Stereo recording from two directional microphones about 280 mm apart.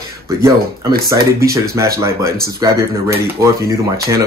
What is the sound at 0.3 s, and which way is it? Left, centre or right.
Speech, centre.